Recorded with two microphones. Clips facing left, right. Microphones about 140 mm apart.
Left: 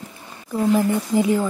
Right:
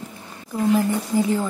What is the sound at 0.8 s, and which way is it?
Speech, 15° left (ahead or behind).